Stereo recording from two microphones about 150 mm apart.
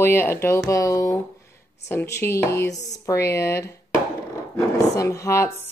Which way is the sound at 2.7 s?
50° left (ahead or behind).